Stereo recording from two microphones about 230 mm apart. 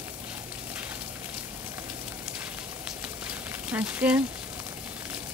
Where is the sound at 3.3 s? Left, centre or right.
Centre.